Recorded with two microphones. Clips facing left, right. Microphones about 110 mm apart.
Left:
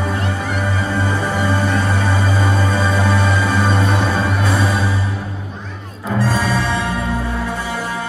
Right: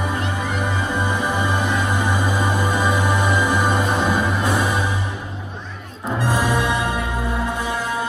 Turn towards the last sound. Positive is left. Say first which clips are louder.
# left 1 dB
turn(degrees=-15)  # may be behind; listen again after turning